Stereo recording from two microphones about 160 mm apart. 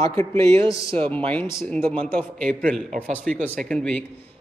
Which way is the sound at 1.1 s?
10° left (ahead or behind).